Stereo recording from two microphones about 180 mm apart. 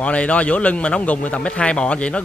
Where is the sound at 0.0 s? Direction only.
5° left (ahead or behind).